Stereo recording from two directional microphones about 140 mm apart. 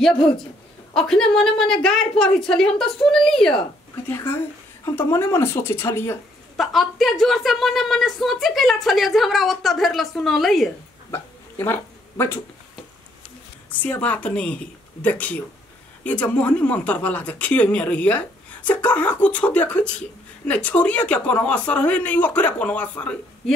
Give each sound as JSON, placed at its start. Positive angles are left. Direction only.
{"t": 0.9, "sound": "a woman's voice", "side_deg": 5}
{"t": 4.1, "sound": "a woman's voice", "side_deg": 15}
{"t": 6.5, "sound": "a woman's voice", "side_deg": 0}
{"t": 11.1, "sound": "a sound", "side_deg": 15}
{"t": 13.7, "sound": "speech", "side_deg": 10}